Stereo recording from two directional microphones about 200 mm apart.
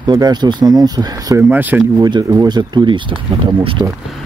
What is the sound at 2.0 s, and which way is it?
Speech, 20° right (ahead or behind).